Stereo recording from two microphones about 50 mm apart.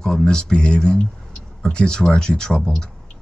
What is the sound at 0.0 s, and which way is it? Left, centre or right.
Speech, centre.